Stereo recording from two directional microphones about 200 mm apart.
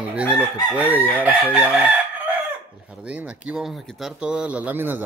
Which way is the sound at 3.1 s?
5° right (ahead or behind).